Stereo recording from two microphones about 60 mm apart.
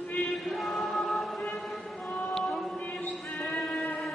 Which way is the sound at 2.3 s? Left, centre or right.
Centre.